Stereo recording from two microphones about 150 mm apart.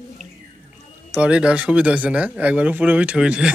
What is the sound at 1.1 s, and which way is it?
Speech, 5° right (ahead or behind).